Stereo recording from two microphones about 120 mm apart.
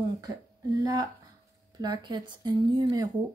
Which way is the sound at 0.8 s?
35° right (ahead or behind).